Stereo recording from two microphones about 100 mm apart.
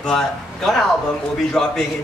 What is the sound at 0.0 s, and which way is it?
A woman's voice, 5° left (ahead or behind).